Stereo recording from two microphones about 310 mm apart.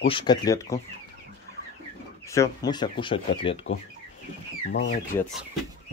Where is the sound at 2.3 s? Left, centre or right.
Centre.